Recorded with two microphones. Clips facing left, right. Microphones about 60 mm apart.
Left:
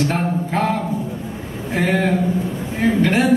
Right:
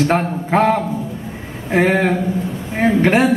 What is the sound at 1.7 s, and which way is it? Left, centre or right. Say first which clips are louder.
A man's voice: right 3 dB; right.